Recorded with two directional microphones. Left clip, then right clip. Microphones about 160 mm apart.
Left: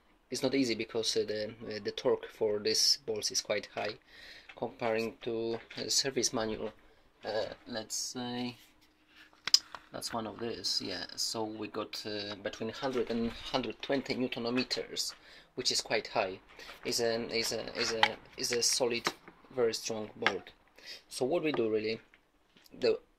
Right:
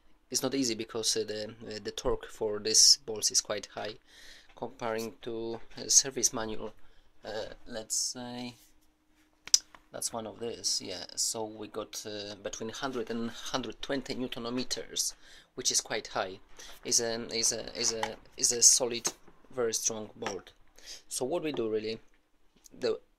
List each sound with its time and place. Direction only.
0.3 s speech: 20° right (ahead or behind); by 8.5 s centre (ahead or behind)
10.1 s speech: 5° right (ahead or behind)